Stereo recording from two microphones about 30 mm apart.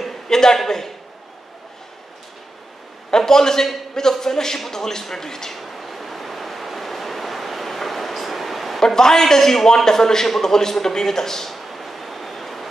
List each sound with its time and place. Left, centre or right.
0.3 s a man's voice: centre
3.1 s a man's voice: centre
5.6 s waves: centre
8.7 s a man's voice: centre
11.5 s train: centre